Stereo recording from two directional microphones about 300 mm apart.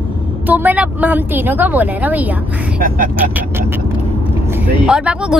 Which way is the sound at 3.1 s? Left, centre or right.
Centre.